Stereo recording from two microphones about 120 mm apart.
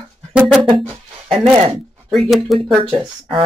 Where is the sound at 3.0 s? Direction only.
45° right (ahead or behind).